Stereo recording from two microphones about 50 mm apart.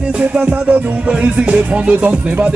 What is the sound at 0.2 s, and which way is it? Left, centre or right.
Music, right.